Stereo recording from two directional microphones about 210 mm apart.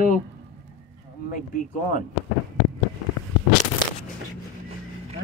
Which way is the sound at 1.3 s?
40° left (ahead or behind).